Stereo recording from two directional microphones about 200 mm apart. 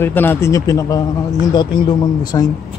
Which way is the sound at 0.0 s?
10° left (ahead or behind).